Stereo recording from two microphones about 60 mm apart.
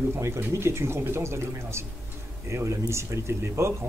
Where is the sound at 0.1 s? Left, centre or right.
Right.